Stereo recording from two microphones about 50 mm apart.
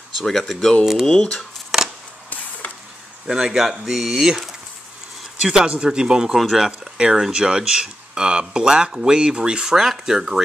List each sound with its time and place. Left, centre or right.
0.2 s speech: centre
1.7 s a sound: centre
2.6 s a sound: left
3.3 s speech: centre
5.4 s speech: centre
6.3 s speech: centre